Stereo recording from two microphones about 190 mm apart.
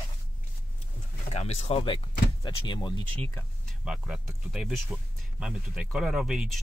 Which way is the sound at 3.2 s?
5° left (ahead or behind).